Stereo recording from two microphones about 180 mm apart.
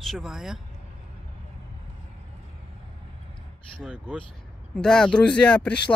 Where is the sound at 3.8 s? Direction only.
5° right (ahead or behind).